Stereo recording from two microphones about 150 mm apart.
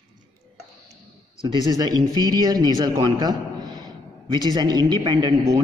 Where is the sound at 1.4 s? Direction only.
25° right (ahead or behind).